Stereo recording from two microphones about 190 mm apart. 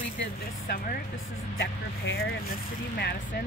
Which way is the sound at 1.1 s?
90° left.